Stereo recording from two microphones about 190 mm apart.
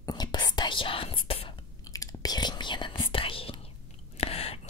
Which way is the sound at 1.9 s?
20° left (ahead or behind).